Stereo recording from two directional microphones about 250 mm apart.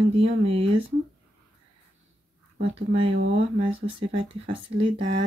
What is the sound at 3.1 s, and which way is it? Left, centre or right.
Speech, right.